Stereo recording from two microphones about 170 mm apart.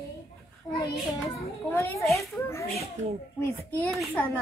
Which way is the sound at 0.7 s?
25° left (ahead or behind).